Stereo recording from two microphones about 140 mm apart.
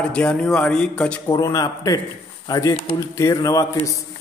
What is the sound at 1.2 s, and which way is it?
A man's voice, 25° left (ahead or behind).